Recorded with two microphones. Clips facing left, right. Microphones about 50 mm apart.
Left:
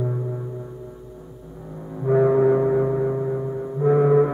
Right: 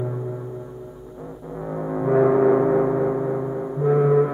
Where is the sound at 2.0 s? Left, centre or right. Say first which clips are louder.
Even; centre.